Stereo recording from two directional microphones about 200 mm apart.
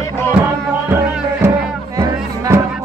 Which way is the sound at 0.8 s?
10° right (ahead or behind).